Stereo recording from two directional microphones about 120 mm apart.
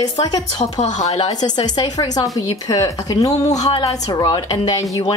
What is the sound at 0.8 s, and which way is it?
Speech, 70° left (ahead or behind).